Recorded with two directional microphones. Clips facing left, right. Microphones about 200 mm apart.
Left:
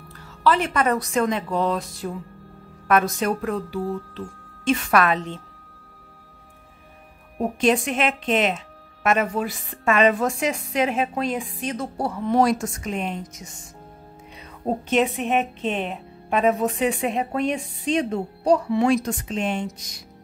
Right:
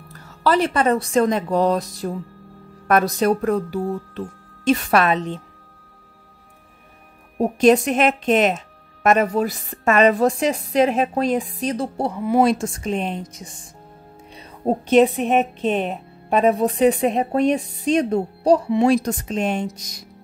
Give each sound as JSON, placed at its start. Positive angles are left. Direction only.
{"t": 0.4, "sound": "a woman's voice", "side_deg": -35}
{"t": 5.0, "sound": "a woman's voice", "side_deg": -20}
{"t": 7.3, "sound": "a woman's voice", "side_deg": -40}
{"t": 12.2, "sound": "a woman's voice", "side_deg": -10}
{"t": 12.4, "sound": "a woman's voice", "side_deg": -30}
{"t": 14.6, "sound": "a woman's voice", "side_deg": -35}